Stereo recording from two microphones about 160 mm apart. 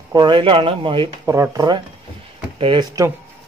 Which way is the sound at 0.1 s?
30° right (ahead or behind).